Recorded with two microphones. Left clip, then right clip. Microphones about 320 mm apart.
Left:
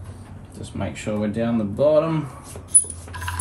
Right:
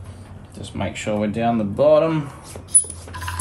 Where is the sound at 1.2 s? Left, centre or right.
Centre.